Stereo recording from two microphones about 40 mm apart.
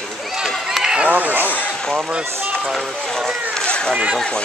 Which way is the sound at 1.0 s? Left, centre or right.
Right.